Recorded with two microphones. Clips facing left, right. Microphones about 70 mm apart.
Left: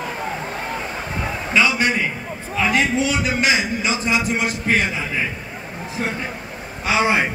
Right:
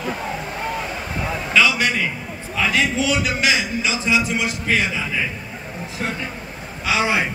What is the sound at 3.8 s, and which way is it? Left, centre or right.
A man's voice, left.